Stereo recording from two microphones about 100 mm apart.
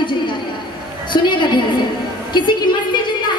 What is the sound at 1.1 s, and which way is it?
Speech, 50° left (ahead or behind).